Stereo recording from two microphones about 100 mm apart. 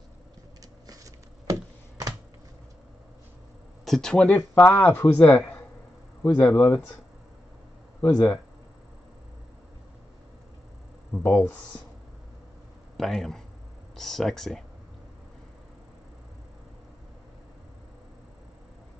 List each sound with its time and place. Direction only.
0.6 s computer keyboard: 35° right (ahead or behind)
3.8 s speech: 5° left (ahead or behind)
4.4 s speech: 20° left (ahead or behind)
6.4 s speech: 30° left (ahead or behind)
8.0 s speech: 15° left (ahead or behind)
11.2 s speech: 25° left (ahead or behind)
12.9 s a man's voice: 5° left (ahead or behind)